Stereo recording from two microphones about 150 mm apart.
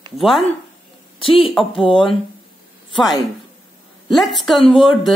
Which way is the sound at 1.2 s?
40° left (ahead or behind).